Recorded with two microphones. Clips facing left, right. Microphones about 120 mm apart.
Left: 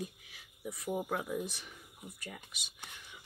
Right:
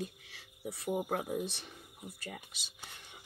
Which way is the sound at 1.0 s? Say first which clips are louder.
Right 1 dB; 45° right (ahead or behind).